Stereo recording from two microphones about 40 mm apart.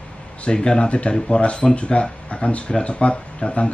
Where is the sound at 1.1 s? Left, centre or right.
Centre.